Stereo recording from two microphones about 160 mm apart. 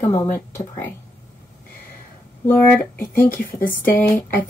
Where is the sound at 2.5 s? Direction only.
10° left (ahead or behind).